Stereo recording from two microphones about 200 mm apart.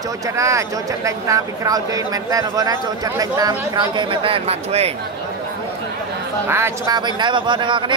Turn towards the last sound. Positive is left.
turn(degrees=-25)  # may be behind; listen again after turning